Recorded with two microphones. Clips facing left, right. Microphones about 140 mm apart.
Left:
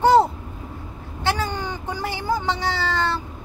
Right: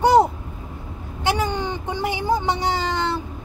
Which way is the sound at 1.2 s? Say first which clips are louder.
Right 2 dB; 15° right (ahead or behind).